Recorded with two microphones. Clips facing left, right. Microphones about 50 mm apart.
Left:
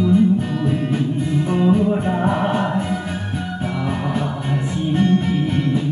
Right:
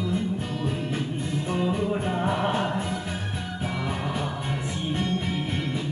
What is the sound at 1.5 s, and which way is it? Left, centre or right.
Music, left.